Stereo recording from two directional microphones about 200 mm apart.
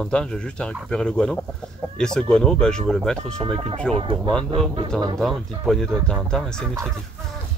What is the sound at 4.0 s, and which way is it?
Speech, 25° right (ahead or behind).